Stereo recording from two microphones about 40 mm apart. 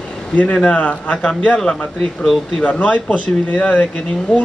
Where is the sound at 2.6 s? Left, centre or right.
Left.